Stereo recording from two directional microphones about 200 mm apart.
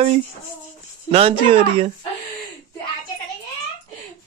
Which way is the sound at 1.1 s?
30° right (ahead or behind).